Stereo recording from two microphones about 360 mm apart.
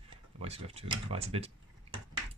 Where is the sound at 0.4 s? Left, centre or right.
Centre.